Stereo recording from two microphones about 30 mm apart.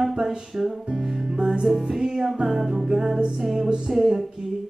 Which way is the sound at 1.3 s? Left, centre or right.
Right.